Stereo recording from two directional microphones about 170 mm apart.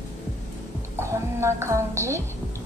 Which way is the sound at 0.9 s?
15° right (ahead or behind).